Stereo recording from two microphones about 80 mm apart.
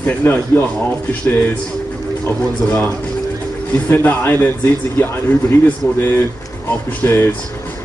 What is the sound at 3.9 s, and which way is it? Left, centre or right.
Speech, left.